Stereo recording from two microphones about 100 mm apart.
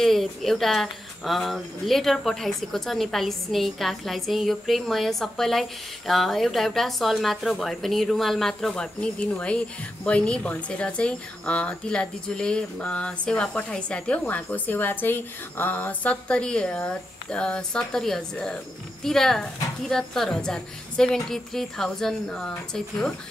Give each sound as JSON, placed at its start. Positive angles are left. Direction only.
{"t": 0.0, "sound": "speech", "side_deg": 0}